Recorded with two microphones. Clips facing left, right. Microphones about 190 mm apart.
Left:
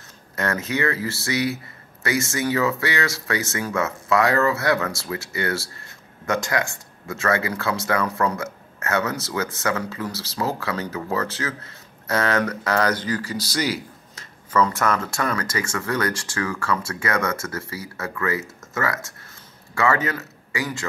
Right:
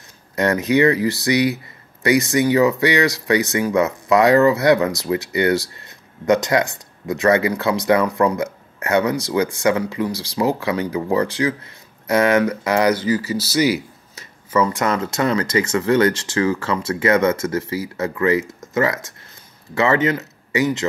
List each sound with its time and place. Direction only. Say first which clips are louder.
0.4 s speech: right 8 dB; 15° right (ahead or behind)